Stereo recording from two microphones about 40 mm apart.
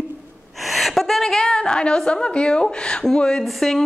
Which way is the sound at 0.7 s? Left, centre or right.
Centre.